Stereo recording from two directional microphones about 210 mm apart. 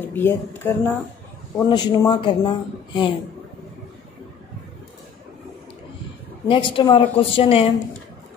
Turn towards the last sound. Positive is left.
turn(degrees=25)  # may be behind; listen again after turning